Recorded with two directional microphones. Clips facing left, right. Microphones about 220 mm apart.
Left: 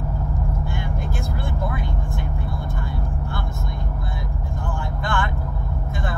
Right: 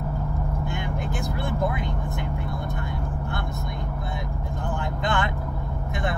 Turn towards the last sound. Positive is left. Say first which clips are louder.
# even
turn(degrees=-20)  # may be behind; listen again after turning